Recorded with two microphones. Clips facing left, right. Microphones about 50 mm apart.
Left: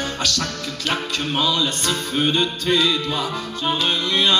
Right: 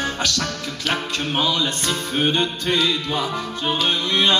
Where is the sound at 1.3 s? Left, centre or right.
Right.